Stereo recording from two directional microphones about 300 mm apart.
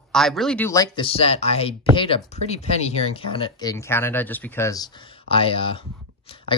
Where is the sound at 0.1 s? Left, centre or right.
Centre.